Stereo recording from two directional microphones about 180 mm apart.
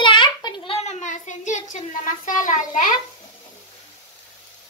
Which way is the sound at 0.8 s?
40° left (ahead or behind).